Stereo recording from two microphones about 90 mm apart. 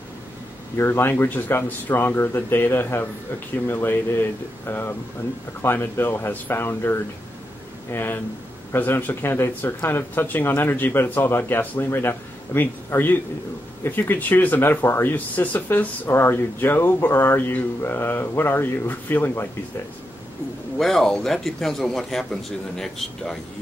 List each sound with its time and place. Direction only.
0.7 s speech: 25° left (ahead or behind)
20.7 s a man's voice: 5° left (ahead or behind)